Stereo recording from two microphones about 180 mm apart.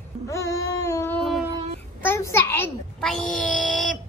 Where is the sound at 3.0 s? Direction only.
Centre (ahead or behind).